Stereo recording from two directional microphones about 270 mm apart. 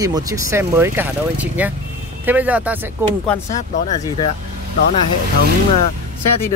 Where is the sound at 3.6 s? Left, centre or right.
Left.